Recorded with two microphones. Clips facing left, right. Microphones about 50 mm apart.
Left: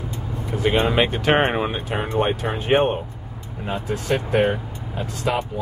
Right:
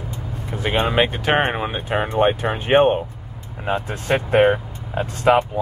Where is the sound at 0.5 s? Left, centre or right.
Centre.